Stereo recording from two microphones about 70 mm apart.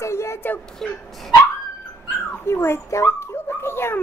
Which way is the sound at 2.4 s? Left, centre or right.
Left.